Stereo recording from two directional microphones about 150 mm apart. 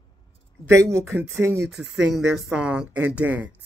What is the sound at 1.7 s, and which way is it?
Speech, 5° right (ahead or behind).